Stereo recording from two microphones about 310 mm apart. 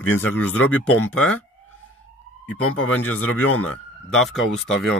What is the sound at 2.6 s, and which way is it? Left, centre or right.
Speech, left.